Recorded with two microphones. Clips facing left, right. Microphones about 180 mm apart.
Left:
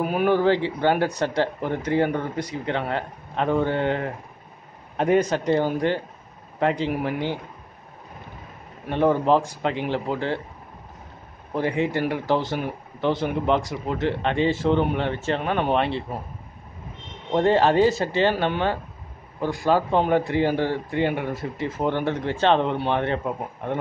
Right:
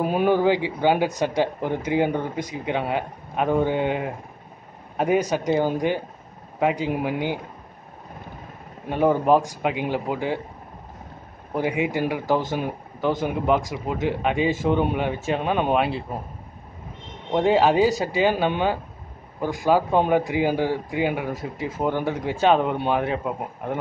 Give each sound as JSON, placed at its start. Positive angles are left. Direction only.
{"t": 0.0, "sound": "speech", "side_deg": -25}
{"t": 0.4, "sound": "a man's voice", "side_deg": -10}
{"t": 8.9, "sound": "speech", "side_deg": -10}
{"t": 11.5, "sound": "speech", "side_deg": -10}
{"t": 17.3, "sound": "speech", "side_deg": -5}